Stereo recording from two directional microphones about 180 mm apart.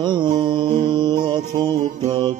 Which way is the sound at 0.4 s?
25° right (ahead or behind).